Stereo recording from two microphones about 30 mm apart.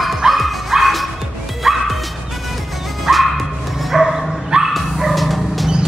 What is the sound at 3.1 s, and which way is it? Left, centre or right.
Dog, centre.